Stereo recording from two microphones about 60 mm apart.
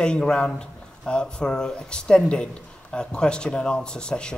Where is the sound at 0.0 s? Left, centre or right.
Centre.